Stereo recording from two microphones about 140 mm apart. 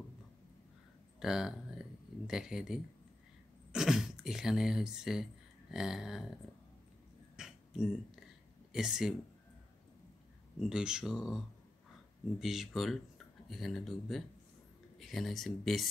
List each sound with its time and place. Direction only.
1.2 s speech: 5° right (ahead or behind)
7.3 s a sound: 5° right (ahead or behind)
8.7 s speech: 5° right (ahead or behind)
10.7 s speech: 5° right (ahead or behind)